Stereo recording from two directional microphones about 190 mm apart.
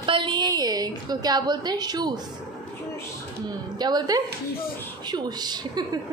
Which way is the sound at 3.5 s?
20° right (ahead or behind).